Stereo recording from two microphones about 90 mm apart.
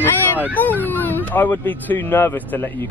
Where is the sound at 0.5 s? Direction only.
20° left (ahead or behind).